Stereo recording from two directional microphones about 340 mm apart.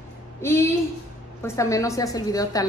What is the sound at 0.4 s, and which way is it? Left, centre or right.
A woman's voice, centre.